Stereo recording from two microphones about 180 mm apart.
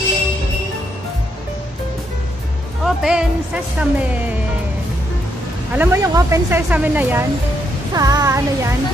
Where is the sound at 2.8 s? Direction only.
5° right (ahead or behind).